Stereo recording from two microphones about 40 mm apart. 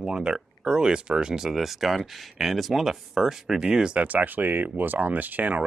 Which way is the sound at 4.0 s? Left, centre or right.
Right.